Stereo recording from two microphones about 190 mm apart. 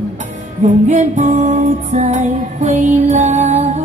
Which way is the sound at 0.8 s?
40° right (ahead or behind).